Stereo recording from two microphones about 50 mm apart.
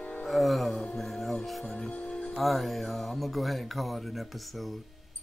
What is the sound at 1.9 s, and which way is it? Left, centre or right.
Music, left.